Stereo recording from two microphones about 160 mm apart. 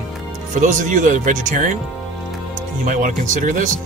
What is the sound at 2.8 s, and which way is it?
Speech, 55° right (ahead or behind).